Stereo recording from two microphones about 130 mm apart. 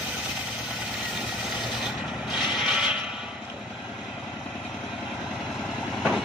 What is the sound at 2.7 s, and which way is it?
Vehicle, 5° right (ahead or behind).